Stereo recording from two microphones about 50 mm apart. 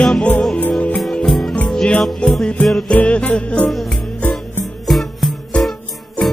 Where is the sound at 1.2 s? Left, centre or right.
Centre.